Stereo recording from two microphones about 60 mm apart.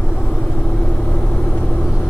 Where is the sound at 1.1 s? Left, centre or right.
Left.